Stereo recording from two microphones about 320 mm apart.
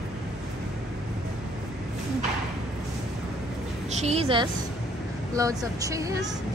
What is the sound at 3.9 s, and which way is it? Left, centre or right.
A woman's voice, right.